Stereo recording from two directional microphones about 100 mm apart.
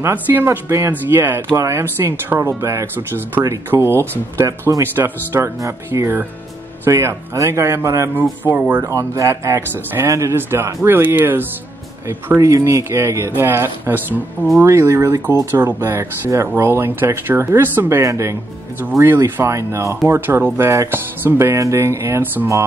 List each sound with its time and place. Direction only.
0.0 s speech: 20° right (ahead or behind)
8.8 s speech: 30° right (ahead or behind)